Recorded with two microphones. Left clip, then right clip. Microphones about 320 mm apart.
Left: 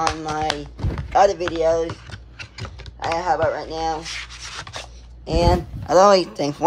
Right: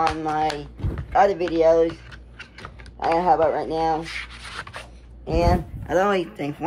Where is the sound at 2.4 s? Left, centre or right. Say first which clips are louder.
Left 3 dB; centre.